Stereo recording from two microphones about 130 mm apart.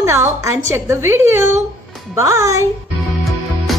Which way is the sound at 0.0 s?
20° right (ahead or behind).